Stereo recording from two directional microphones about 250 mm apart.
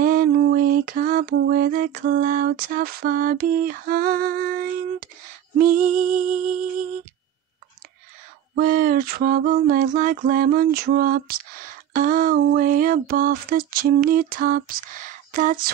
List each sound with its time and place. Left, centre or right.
0.0 s lullaby: right
5.6 s music: right
8.5 s a sound: right